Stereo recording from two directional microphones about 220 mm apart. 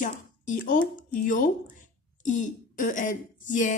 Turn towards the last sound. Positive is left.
turn(degrees=35)  # may be behind; listen again after turning